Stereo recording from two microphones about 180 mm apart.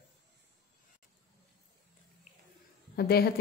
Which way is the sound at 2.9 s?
60° left (ahead or behind).